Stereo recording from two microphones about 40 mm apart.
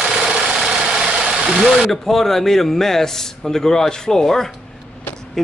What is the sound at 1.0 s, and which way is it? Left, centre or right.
Vehicle, right.